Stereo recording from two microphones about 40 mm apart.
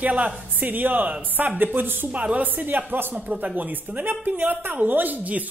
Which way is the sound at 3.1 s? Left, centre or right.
Right.